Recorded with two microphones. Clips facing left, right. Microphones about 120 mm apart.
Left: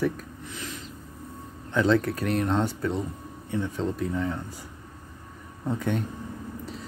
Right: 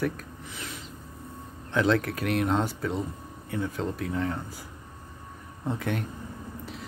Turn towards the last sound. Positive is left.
turn(degrees=0)  # may be behind; listen again after turning